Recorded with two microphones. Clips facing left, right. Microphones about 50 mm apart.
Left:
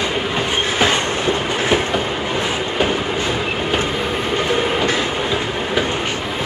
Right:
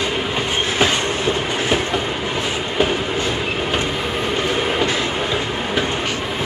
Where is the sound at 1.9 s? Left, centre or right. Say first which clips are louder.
Left 1 dB; centre.